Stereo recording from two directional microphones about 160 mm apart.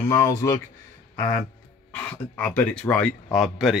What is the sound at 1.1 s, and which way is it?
Music, 20° left (ahead or behind).